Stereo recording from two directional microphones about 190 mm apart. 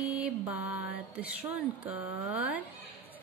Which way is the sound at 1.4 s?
10° right (ahead or behind).